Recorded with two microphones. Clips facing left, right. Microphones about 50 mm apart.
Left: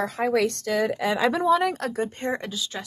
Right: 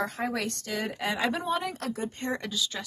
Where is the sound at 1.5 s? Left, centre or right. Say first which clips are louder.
Left 9 dB; left.